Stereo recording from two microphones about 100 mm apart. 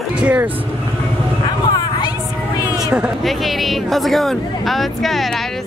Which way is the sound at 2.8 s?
5° right (ahead or behind).